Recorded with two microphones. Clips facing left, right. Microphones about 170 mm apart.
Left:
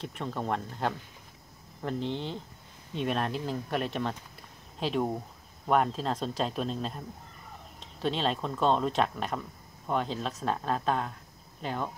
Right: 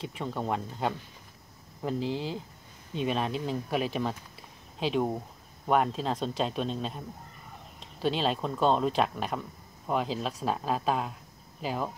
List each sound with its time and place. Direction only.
0.0 s speech: centre (ahead or behind)